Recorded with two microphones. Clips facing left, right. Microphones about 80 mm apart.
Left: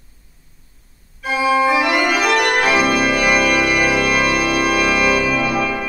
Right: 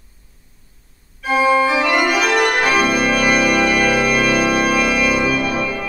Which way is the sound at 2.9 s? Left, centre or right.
Centre.